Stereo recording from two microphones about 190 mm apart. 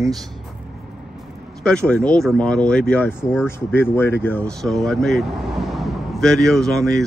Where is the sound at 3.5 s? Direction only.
10° left (ahead or behind).